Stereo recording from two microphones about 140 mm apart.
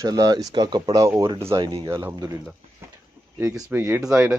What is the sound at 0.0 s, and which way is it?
Speech, 25° right (ahead or behind).